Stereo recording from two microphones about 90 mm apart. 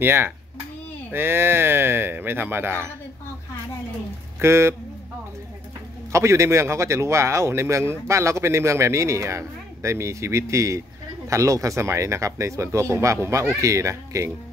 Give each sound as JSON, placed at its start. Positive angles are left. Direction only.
{"t": 0.0, "sound": "speech", "side_deg": -25}
{"t": 4.4, "sound": "speech", "side_deg": -30}
{"t": 6.1, "sound": "speech", "side_deg": -35}